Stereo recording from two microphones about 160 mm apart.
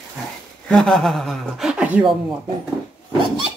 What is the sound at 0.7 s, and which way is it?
Speech, 5° left (ahead or behind).